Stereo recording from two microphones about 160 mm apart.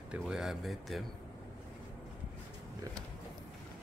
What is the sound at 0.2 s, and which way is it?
Speech, centre (ahead or behind).